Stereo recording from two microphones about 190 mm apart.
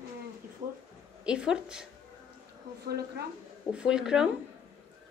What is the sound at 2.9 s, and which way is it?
Speech, 55° right (ahead or behind).